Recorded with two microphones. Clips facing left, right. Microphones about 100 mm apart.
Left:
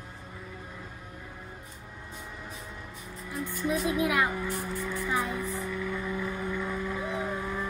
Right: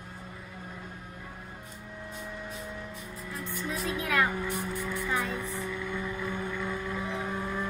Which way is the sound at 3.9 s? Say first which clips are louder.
Even; 15° left (ahead or behind).